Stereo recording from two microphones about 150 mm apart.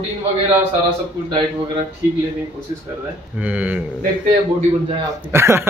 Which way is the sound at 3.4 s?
10° right (ahead or behind).